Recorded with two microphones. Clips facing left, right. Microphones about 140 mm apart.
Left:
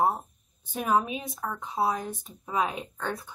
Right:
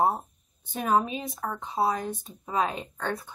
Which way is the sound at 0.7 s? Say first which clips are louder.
Right 1 dB; centre (ahead or behind).